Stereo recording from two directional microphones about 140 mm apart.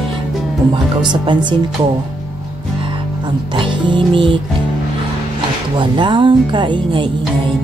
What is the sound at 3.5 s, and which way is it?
Music, 35° right (ahead or behind).